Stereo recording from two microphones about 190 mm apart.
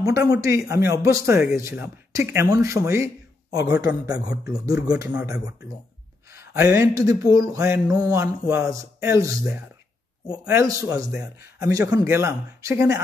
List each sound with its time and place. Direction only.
0.0 s mantra: 15° right (ahead or behind)
3.8 s speech: 20° right (ahead or behind)
5.1 s mantra: 15° right (ahead or behind)
11.1 s speech: 5° right (ahead or behind)
11.9 s mantra: 15° right (ahead or behind)